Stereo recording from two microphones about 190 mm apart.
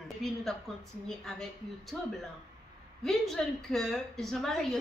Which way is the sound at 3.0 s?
Centre (ahead or behind).